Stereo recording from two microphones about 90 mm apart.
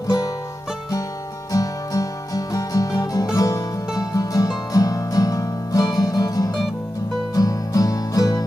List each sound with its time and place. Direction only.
1.5 s music: 40° left (ahead or behind)